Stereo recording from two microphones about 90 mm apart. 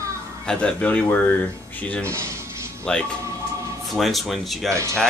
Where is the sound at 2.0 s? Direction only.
30° right (ahead or behind).